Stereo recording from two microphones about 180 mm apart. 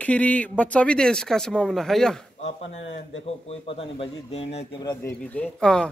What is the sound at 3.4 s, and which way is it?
Speech, 30° left (ahead or behind).